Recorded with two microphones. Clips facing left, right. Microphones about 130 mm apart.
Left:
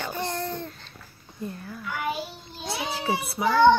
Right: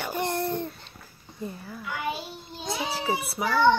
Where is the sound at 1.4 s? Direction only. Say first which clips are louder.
Left 1 dB; 5° right (ahead or behind).